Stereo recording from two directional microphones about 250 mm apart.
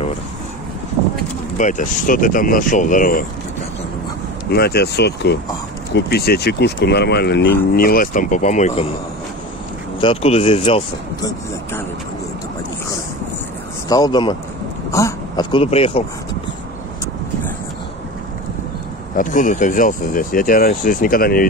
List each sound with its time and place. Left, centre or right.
1.6 s speech: left
4.5 s speech: left
9.9 s speech: left
13.8 s speech: centre
14.9 s a sound: centre
19.1 s speech: left